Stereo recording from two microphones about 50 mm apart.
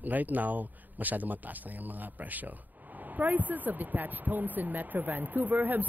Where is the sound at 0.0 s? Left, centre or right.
Right.